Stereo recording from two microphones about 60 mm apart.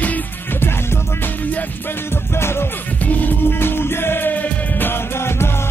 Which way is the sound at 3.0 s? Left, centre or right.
Left.